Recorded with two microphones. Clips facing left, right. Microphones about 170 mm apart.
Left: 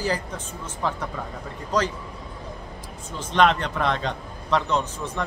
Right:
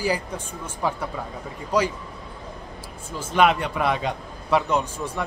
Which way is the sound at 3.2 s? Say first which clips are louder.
Right 1 dB; 10° right (ahead or behind).